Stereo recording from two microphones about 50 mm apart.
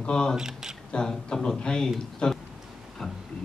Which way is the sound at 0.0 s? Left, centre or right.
Centre.